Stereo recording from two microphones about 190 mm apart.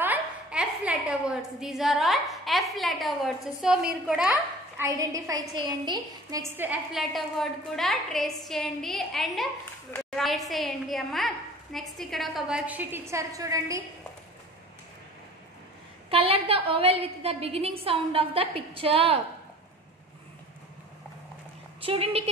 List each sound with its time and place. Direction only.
0.0 s a woman's voice: 5° right (ahead or behind)
4.8 s a woman's voice: 15° right (ahead or behind)
16.1 s a woman's voice: 30° right (ahead or behind)
21.8 s a woman's voice: 30° right (ahead or behind)